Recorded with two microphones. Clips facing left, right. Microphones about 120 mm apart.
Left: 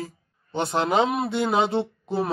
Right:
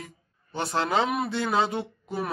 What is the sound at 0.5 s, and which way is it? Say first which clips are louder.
Speech: left 4 dB; 20° left (ahead or behind).